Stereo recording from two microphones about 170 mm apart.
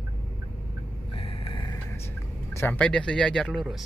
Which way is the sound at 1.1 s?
35° left (ahead or behind).